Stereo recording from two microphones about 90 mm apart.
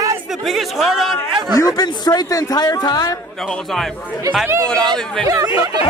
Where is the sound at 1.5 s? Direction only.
45° left (ahead or behind).